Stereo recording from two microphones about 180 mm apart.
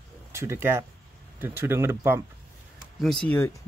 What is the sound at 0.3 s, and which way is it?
Speech, 15° right (ahead or behind).